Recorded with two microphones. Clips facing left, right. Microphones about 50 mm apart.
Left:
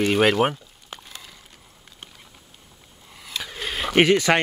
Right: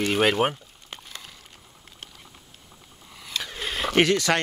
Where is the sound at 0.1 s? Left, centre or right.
Centre.